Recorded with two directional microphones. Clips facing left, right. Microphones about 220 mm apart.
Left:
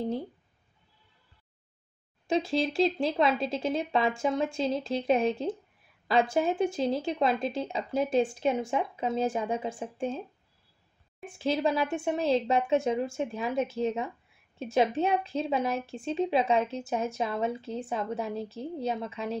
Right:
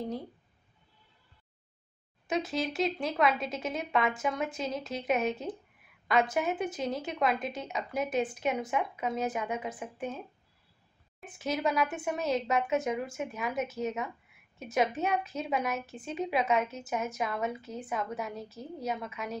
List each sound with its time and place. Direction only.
2.2 s a woman's voice: 30° left (ahead or behind)
11.2 s a woman's voice: 30° left (ahead or behind)